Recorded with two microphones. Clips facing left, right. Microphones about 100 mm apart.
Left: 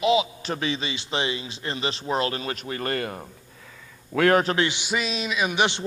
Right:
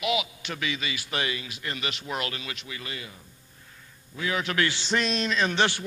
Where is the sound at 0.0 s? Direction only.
30° left (ahead or behind); by 4.4 s 65° left (ahead or behind).